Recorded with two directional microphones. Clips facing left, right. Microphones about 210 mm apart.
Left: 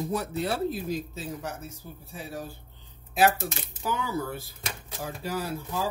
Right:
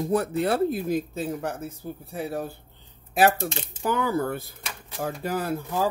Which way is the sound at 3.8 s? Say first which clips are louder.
Right 6 dB; 55° right (ahead or behind).